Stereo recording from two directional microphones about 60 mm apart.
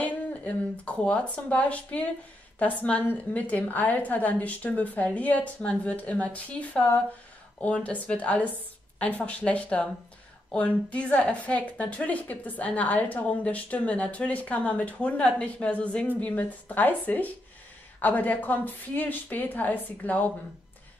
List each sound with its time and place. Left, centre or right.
0.0 s a woman's voice: left